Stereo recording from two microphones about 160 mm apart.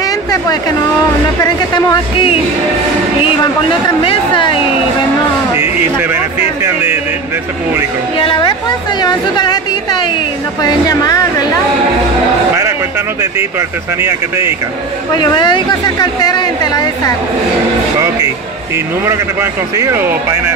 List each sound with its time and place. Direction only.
0.0 s a sound: 20° left (ahead or behind)
1.4 s speech: 20° left (ahead or behind)
4.0 s speech: 30° left (ahead or behind)
5.6 s speech: 15° right (ahead or behind)
8.2 s speech: 30° left (ahead or behind)
13.2 s a man's voice: 15° right (ahead or behind)
15.1 s speech: 30° left (ahead or behind)
19.0 s a man's voice: 20° right (ahead or behind)